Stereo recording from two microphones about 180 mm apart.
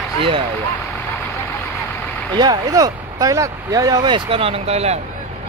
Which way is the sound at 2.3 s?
25° right (ahead or behind).